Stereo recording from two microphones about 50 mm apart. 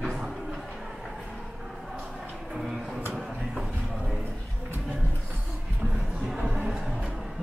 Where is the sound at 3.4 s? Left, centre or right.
Centre.